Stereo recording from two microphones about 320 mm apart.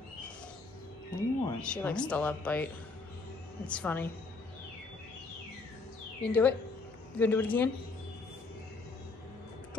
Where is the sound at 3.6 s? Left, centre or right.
Centre.